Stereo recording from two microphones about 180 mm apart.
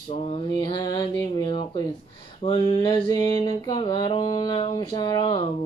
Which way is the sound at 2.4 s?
30° left (ahead or behind).